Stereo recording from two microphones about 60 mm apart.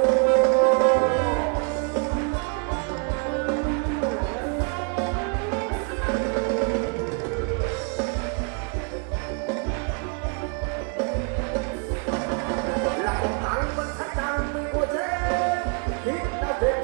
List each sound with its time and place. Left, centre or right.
0.0 s music: centre
3.3 s music: centre
12.1 s music: centre